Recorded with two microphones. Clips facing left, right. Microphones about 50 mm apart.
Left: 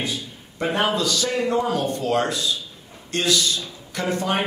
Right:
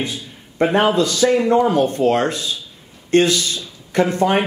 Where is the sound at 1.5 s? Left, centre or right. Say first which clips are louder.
Right 7 dB; right.